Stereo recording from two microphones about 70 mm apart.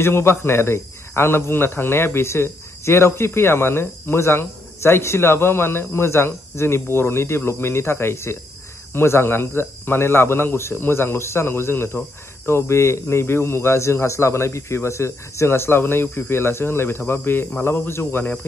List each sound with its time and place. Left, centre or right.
0.0 s speech: left